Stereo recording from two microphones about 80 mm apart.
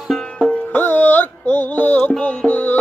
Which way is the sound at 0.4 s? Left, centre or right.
Centre.